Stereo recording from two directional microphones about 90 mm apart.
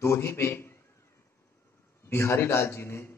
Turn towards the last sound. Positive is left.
turn(degrees=30)  # may be behind; listen again after turning